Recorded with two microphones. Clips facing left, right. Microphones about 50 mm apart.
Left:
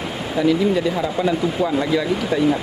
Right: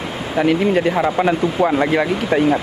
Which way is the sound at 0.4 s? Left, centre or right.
Right.